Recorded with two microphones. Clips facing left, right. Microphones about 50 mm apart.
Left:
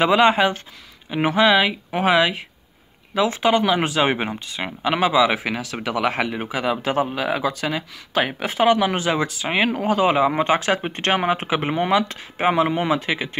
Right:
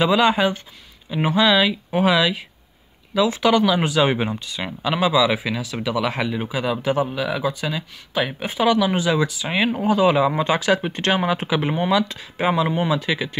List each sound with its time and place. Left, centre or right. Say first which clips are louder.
0.0 s speech: left 1 dB; left
3.4 s speech: right 1 dB; left
3.7 s speech: right 1 dB; left
8.5 s speech: left 1 dB; left